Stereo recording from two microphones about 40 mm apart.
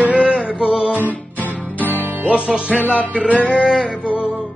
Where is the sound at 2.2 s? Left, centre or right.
Right.